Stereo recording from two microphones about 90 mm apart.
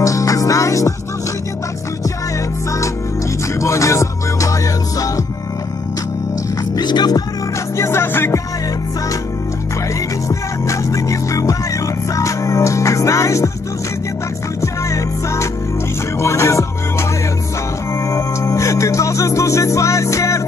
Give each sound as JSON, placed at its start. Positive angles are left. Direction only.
{"t": 0.0, "sound": "music", "side_deg": 40}
{"t": 3.5, "sound": "music", "side_deg": 35}
{"t": 6.7, "sound": "music", "side_deg": 50}
{"t": 7.7, "sound": "music", "side_deg": 30}
{"t": 10.2, "sound": "music", "side_deg": 35}
{"t": 14.6, "sound": "music", "side_deg": 35}
{"t": 18.1, "sound": "music", "side_deg": 35}